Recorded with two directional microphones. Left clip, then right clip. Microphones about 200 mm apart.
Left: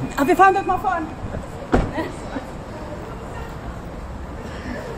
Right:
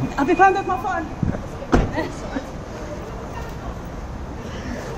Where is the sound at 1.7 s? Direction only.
50° right (ahead or behind).